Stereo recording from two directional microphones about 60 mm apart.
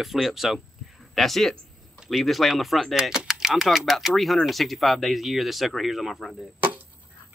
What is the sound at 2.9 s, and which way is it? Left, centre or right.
Speech, centre.